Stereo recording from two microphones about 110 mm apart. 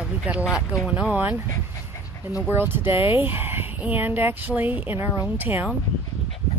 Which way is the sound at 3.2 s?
20° right (ahead or behind).